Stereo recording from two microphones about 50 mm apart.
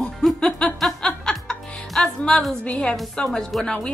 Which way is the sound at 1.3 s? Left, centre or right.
Centre.